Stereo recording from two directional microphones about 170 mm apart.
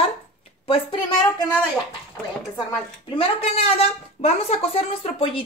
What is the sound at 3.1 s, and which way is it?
A woman's voice, 35° left (ahead or behind).